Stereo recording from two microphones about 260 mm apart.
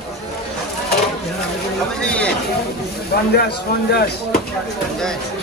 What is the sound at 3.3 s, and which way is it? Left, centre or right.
Speech, left.